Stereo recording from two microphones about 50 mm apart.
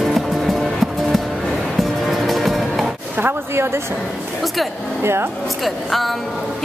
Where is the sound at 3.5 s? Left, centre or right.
Right.